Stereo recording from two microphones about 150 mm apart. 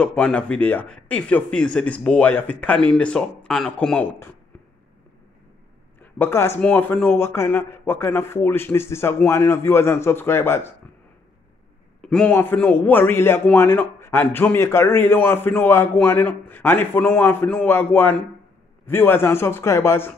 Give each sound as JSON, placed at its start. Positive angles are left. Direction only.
{"t": 0.0, "sound": "a man's voice", "side_deg": 10}
{"t": 5.9, "sound": "a man's voice", "side_deg": 15}
{"t": 12.0, "sound": "a man's voice", "side_deg": 5}